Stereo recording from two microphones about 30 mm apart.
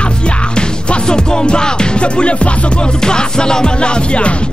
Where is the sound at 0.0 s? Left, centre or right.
Left.